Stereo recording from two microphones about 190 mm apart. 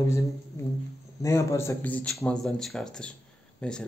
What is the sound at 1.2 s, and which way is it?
A man's voice, 15° left (ahead or behind).